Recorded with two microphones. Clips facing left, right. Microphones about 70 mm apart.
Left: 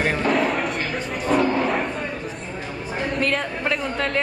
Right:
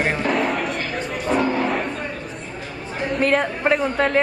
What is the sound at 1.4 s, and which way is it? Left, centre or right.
Music, centre.